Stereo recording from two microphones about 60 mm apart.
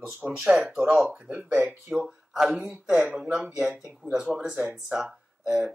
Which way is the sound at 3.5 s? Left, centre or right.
Centre.